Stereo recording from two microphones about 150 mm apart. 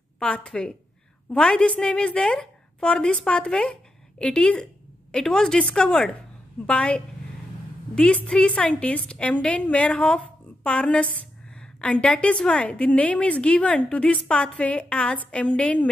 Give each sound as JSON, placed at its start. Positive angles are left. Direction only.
{"t": 0.2, "sound": "a woman's voice", "side_deg": 5}